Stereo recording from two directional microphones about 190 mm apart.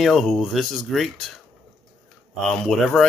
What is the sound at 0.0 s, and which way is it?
Speech, centre (ahead or behind).